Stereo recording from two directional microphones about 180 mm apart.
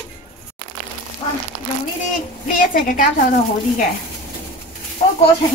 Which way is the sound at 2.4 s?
50° left (ahead or behind).